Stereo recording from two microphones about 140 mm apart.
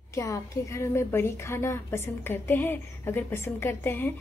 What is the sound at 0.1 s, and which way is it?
A woman's voice, 20° left (ahead or behind).